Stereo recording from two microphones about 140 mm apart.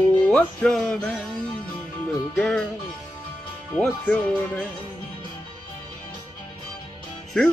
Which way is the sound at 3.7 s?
10° left (ahead or behind).